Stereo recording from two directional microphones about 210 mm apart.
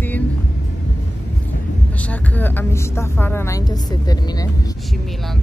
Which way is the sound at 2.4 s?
10° left (ahead or behind).